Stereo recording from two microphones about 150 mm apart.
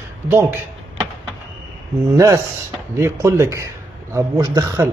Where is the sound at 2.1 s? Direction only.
20° right (ahead or behind).